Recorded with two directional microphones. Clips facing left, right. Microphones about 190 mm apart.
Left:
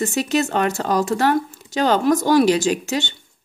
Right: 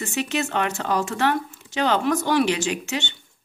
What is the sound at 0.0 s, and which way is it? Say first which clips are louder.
Speech: left 6 dB; 40° left (ahead or behind).